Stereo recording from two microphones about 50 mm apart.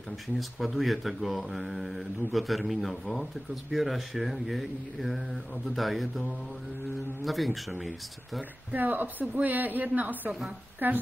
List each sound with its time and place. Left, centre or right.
0.4 s speech: centre
7.2 s speech: centre
8.7 s speech: right